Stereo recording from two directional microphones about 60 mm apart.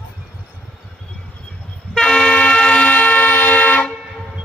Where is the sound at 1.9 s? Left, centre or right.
Centre.